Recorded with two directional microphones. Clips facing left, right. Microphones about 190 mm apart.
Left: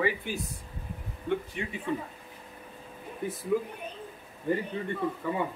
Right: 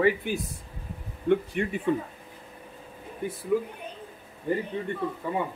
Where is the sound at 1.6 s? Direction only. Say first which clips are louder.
Right 7 dB; 55° right (ahead or behind).